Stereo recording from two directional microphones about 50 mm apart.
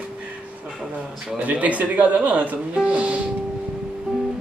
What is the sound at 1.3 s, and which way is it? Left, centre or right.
Speech, right.